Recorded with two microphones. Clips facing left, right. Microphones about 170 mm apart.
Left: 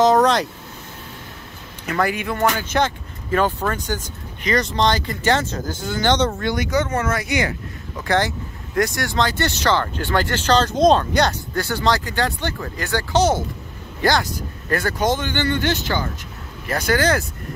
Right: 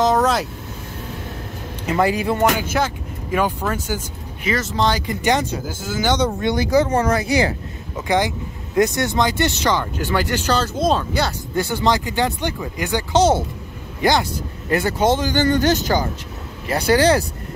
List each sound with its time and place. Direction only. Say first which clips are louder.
0.0 s speech: left 2 dB; centre (ahead or behind)
1.9 s speech: right 4 dB; 25° right (ahead or behind)
2.5 s speech: even; 10° right (ahead or behind)
5.0 s speech: right 1 dB; 15° right (ahead or behind)
6.4 s speech: right 4 dB; 30° right (ahead or behind)
7.9 s speech: right 1 dB; 15° right (ahead or behind)
11.5 s speech: right 5 dB; 20° right (ahead or behind); by 16.1 s 40° right (ahead or behind)
16.6 s speech: right 4 dB; 30° right (ahead or behind)